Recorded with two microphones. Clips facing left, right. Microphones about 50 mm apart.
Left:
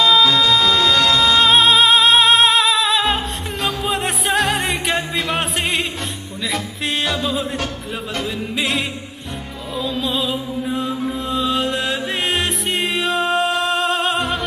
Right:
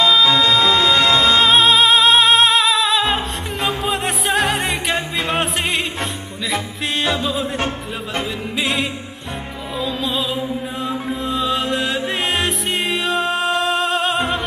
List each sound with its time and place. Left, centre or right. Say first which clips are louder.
0.3 s music: right 1 dB; right
1.1 s music: right 1 dB; right
1.4 s music: even; centre
7.5 s music: right 2 dB; right
8.5 s music: right 2 dB; centre